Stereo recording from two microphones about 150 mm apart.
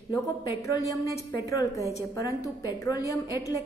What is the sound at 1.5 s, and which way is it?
A woman's voice, 20° left (ahead or behind).